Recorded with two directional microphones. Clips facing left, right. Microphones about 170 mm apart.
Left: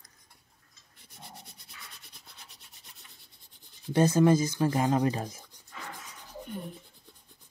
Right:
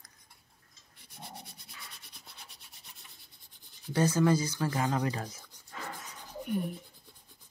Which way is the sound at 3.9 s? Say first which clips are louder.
Left 4 dB; 25° left (ahead or behind).